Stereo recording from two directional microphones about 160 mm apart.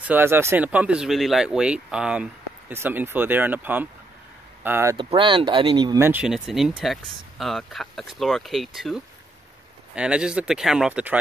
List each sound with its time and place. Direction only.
0.0 s speech: 10° right (ahead or behind)
4.9 s speech: 30° right (ahead or behind)
6.0 s speech: 5° right (ahead or behind)